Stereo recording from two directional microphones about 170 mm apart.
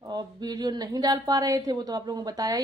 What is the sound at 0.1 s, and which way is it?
A woman's voice, 25° right (ahead or behind).